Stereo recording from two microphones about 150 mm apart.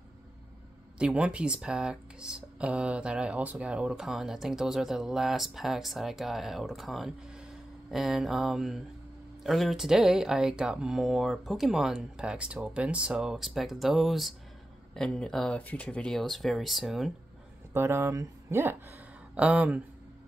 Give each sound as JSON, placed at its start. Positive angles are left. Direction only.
{"t": 0.9, "sound": "speech", "side_deg": -5}
{"t": 17.7, "sound": "speech", "side_deg": -15}